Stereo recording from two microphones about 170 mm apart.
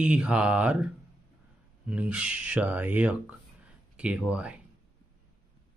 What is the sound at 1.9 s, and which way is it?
Speech, 5° right (ahead or behind).